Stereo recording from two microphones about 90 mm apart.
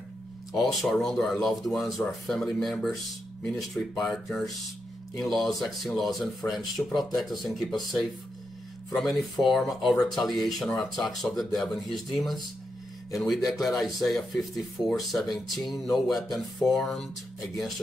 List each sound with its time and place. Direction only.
0.5 s speech: centre (ahead or behind)
6.4 s speech: 20° left (ahead or behind)
7.2 s speech: centre (ahead or behind)
9.1 s speech: centre (ahead or behind)